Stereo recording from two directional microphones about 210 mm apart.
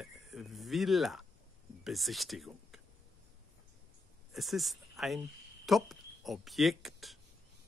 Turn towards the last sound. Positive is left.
turn(degrees=0)  # may be behind; listen again after turning